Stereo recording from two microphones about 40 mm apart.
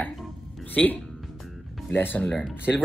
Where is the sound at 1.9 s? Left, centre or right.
Left.